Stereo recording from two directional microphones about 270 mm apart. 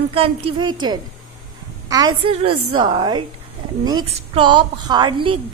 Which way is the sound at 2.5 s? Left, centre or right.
Right.